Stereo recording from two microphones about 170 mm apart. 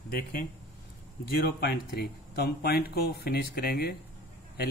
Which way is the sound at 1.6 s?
70° left (ahead or behind).